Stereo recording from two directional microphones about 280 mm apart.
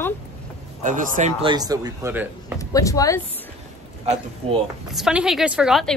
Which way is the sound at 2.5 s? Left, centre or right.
Centre.